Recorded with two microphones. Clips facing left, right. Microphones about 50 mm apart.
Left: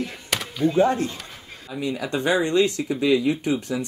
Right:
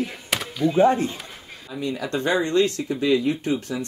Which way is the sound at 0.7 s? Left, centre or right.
Centre.